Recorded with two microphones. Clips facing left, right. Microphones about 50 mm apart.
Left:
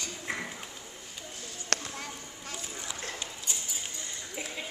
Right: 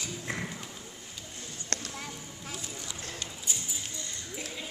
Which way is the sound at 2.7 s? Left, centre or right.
Left.